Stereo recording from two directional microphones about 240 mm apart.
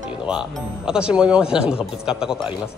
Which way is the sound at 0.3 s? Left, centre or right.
Centre.